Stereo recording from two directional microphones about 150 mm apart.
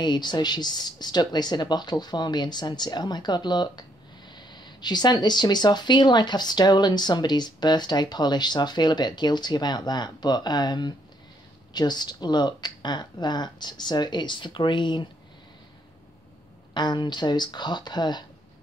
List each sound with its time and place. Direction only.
0.0 s speech: 30° left (ahead or behind)
16.7 s speech: 30° left (ahead or behind)